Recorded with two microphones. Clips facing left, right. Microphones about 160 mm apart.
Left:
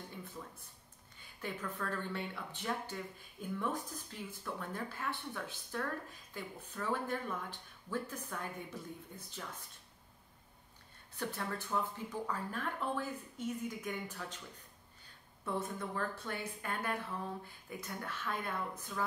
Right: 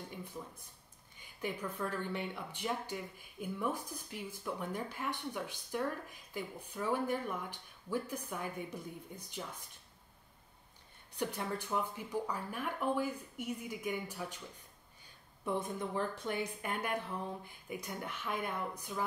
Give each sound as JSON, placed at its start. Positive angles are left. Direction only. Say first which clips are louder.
{"t": 1.4, "sound": "speech", "louder": "right 3 dB", "side_deg": -15}
{"t": 11.1, "sound": "speech", "louder": "right 2 dB", "side_deg": -15}
{"t": 15.4, "sound": "speech", "louder": "right 2 dB", "side_deg": -15}